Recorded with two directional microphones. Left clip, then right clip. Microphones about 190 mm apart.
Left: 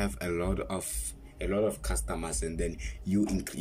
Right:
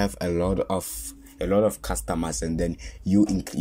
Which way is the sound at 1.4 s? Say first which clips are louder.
Right 8 dB; 40° right (ahead or behind).